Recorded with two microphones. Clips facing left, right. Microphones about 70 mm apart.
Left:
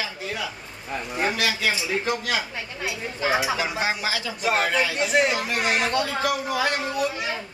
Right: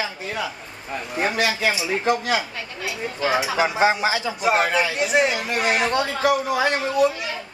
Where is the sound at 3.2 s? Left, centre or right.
Centre.